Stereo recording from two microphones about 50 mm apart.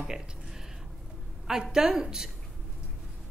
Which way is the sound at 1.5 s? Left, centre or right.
Centre.